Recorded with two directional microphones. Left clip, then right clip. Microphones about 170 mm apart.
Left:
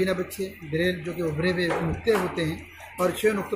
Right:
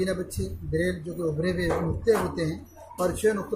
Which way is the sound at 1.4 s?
20° right (ahead or behind).